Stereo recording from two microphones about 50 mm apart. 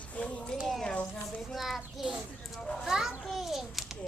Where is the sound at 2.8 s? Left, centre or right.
Centre.